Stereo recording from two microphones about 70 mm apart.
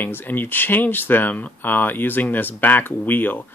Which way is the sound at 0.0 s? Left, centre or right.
Left.